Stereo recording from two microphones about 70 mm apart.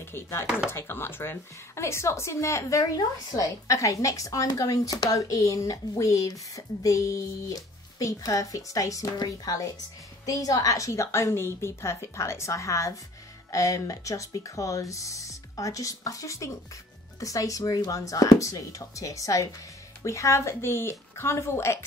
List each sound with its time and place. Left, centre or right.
0.1 s speech: left
2.8 s a woman's voice: left